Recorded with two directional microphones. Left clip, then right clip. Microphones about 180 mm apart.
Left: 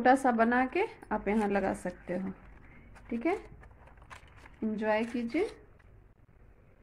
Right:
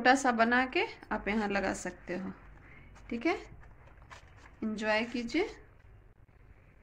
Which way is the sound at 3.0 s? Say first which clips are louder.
Even; 15° left (ahead or behind).